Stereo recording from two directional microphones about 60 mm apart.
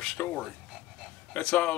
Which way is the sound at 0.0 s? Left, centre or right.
Left.